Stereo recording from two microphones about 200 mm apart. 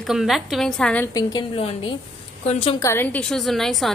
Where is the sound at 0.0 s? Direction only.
Centre (ahead or behind).